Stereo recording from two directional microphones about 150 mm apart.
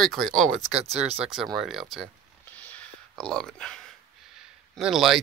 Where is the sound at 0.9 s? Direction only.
45° right (ahead or behind).